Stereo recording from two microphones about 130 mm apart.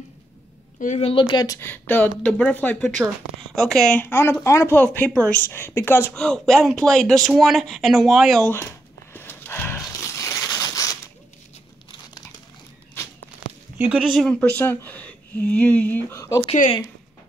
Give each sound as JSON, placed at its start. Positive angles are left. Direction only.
{"t": 0.7, "sound": "speech", "side_deg": 70}
{"t": 1.0, "sound": "speech", "side_deg": 40}
{"t": 1.6, "sound": "speech", "side_deg": 15}
{"t": 6.1, "sound": "speech", "side_deg": 5}
{"t": 8.5, "sound": "a sound", "side_deg": 15}
{"t": 13.7, "sound": "speech", "side_deg": -5}
{"t": 14.2, "sound": "speech", "side_deg": 10}